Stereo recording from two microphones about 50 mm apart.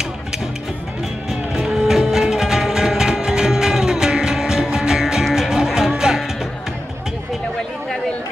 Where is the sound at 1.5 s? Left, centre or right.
Centre.